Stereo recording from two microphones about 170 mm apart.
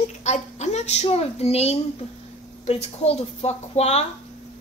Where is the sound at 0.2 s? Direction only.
40° left (ahead or behind).